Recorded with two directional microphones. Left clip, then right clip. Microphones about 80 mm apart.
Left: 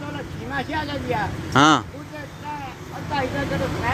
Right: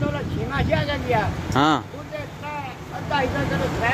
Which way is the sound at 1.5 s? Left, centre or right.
Left.